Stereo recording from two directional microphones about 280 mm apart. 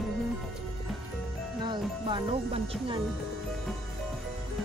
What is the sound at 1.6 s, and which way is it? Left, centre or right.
Speech, centre.